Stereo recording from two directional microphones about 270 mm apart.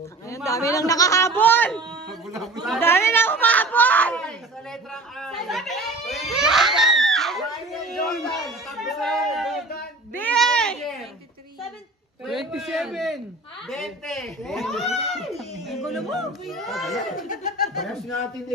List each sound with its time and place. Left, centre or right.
0.5 s a man's voice: centre
2.6 s a sound: centre
5.2 s screaming: centre
7.9 s a sound: centre
12.3 s a man's voice: centre
17.3 s speech: left